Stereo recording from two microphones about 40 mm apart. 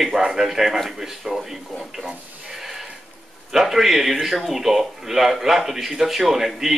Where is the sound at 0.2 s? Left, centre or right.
Centre.